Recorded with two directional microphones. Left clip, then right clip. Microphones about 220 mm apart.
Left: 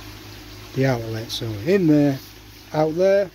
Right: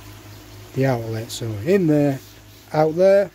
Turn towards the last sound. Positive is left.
turn(degrees=-25)  # may be behind; listen again after turning